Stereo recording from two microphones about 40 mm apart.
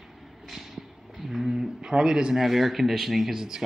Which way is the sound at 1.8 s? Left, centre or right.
Centre.